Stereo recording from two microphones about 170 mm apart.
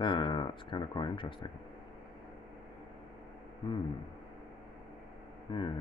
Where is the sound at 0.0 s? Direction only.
25° left (ahead or behind).